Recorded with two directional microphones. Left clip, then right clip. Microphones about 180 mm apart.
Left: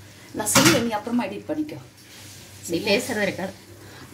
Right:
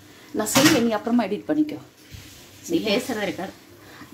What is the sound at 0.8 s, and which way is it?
Speech, 55° right (ahead or behind).